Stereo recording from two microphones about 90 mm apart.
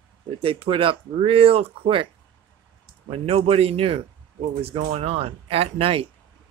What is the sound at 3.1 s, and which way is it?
Speech, 90° right.